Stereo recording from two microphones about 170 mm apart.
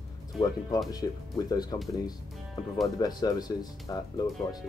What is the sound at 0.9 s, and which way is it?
Speech, 20° left (ahead or behind).